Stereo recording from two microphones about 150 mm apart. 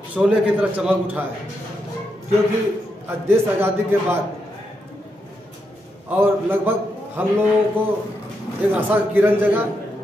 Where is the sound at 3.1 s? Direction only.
15° right (ahead or behind).